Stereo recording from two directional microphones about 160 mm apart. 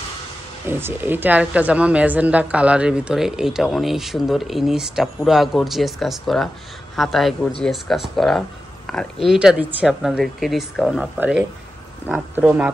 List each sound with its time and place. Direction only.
0.7 s a woman's voice: 15° right (ahead or behind)